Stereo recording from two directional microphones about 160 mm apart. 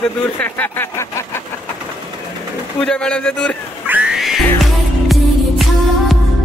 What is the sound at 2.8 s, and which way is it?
Speech, 5° left (ahead or behind).